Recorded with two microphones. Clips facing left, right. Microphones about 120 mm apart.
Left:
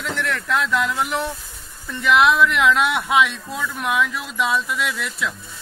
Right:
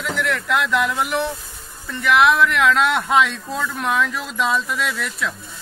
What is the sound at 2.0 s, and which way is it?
Speech, 20° left (ahead or behind).